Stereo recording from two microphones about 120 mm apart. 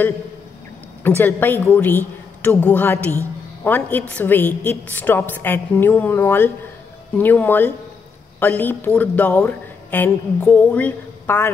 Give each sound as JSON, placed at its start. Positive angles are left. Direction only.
{"t": 1.0, "sound": "a woman's voice", "side_deg": 15}